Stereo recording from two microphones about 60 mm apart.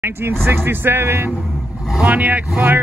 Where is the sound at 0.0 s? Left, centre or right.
Right.